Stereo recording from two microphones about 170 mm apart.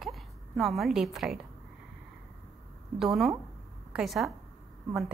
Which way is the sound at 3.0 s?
Centre (ahead or behind).